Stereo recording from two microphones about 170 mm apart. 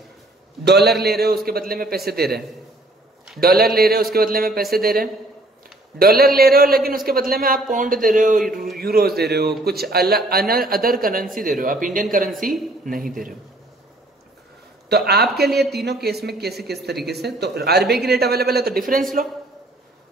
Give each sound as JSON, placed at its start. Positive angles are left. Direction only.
{"t": 0.7, "sound": "a man's voice", "side_deg": -70}
{"t": 8.5, "sound": "speech", "side_deg": 0}
{"t": 8.7, "sound": "a man's voice", "side_deg": -60}
{"t": 14.9, "sound": "a man's voice", "side_deg": -70}